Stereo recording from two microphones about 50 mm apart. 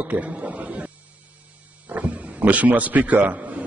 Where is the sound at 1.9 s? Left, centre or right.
Right.